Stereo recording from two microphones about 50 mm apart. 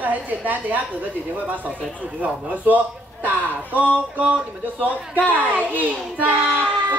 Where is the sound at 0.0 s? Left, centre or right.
Right.